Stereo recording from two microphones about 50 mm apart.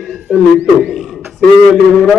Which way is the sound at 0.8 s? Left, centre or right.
Centre.